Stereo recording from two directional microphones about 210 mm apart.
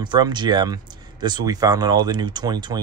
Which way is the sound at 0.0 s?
20° right (ahead or behind).